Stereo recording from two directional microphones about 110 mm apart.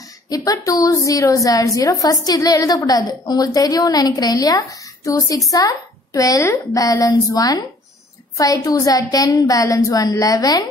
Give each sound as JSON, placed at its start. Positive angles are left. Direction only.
{"t": 0.5, "sound": "a woman's voice", "side_deg": 30}